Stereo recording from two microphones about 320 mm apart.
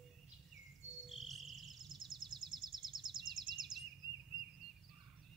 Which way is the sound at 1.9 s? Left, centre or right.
Centre.